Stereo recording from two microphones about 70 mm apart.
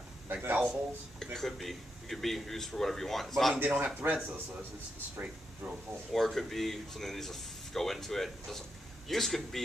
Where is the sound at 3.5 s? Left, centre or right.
Right.